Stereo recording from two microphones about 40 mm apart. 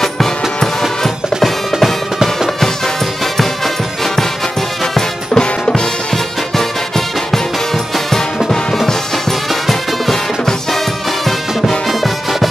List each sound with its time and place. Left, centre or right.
0.0 s music: centre
3.3 s music: centre
7.2 s music: centre
11.9 s music: centre